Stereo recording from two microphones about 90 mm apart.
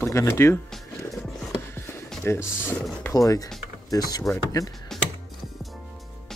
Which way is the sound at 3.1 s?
40° left (ahead or behind).